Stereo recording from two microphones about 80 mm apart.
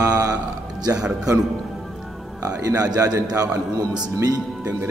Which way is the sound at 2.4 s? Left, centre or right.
Right.